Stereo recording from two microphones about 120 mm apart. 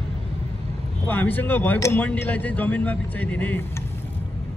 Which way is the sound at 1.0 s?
15° left (ahead or behind).